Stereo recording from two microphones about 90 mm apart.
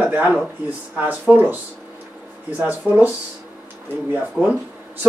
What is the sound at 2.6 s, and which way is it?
Speech, 20° right (ahead or behind).